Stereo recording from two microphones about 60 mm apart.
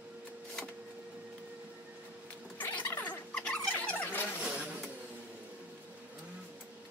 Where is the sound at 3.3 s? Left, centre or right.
Centre.